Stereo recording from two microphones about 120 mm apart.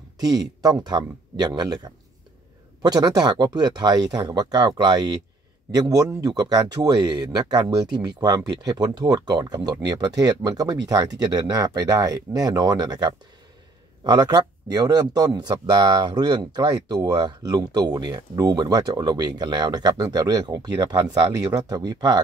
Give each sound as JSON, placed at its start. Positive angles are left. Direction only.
{"t": 0.2, "sound": "speech", "side_deg": -30}